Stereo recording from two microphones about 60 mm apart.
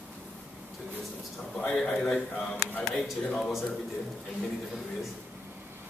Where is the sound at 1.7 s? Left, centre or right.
Centre.